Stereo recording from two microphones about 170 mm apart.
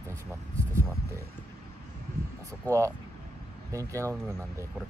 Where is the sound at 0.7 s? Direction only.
15° right (ahead or behind).